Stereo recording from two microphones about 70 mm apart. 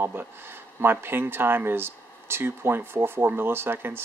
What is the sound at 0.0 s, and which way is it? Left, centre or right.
Speech, right.